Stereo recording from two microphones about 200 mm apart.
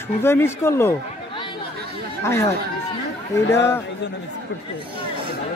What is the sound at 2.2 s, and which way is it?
Speech, 15° left (ahead or behind).